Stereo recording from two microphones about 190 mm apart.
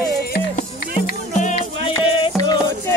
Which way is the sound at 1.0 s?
40° left (ahead or behind).